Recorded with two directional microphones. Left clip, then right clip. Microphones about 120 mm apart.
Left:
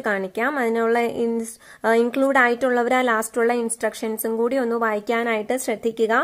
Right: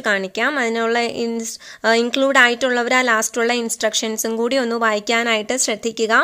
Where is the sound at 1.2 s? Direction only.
20° right (ahead or behind).